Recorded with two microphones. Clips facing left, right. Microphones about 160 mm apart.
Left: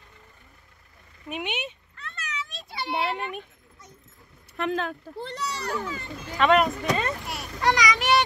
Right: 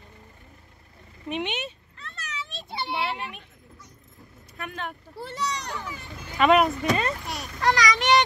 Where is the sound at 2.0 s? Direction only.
30° right (ahead or behind).